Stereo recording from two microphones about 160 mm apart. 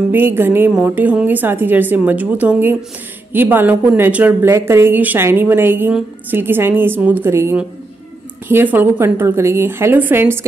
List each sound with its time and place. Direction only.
0.1 s speech: 15° right (ahead or behind)